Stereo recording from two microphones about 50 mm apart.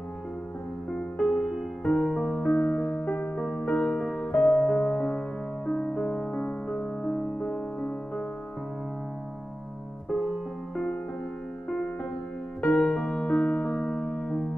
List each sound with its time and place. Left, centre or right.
1.2 s music: centre
2.5 s music: left
3.3 s music: centre
3.6 s music: left
4.2 s music: centre
5.7 s music: centre
10.1 s music: right
12.8 s music: centre
13.2 s music: centre
13.8 s music: centre